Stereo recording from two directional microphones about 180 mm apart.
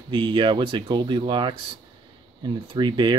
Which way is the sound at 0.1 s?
25° right (ahead or behind).